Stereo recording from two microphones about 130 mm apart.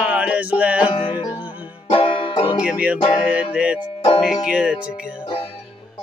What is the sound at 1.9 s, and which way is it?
Music, 45° left (ahead or behind).